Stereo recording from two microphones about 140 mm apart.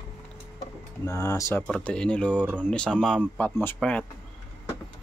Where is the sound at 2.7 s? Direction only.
5° left (ahead or behind).